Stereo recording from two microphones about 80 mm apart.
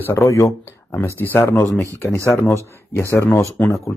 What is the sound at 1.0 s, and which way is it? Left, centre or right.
Speech, left.